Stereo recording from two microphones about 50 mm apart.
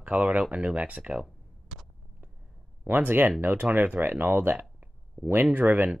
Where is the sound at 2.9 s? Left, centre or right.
Right.